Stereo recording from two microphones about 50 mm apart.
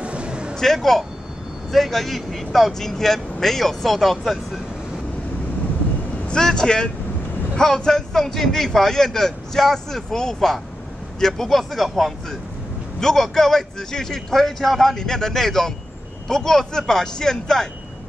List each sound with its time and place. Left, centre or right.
0.0 s a sound: right
0.7 s speech: centre
6.2 s a man's voice: centre